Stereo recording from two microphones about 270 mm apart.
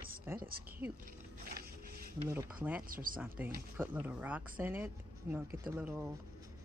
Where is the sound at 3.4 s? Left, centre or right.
Centre.